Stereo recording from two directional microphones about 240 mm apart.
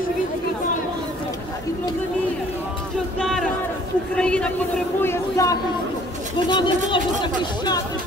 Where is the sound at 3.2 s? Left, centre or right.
Centre.